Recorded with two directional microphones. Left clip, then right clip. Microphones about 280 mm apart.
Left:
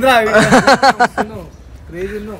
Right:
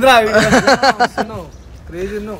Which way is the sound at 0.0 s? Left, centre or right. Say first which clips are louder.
Even; centre.